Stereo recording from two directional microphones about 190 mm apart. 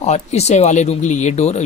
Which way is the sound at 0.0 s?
35° left (ahead or behind).